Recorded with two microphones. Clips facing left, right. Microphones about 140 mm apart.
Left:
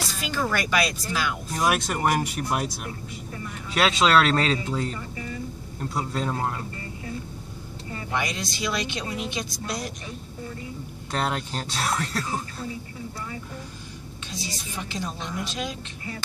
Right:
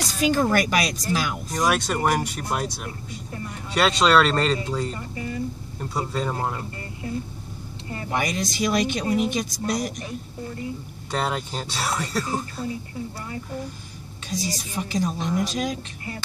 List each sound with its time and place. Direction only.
0.3 s speech: 45° right (ahead or behind)
1.5 s speech: 5° left (ahead or behind)
5.9 s speech: centre (ahead or behind)
8.1 s speech: 45° right (ahead or behind)
11.1 s speech: 5° right (ahead or behind)
14.3 s speech: 40° right (ahead or behind)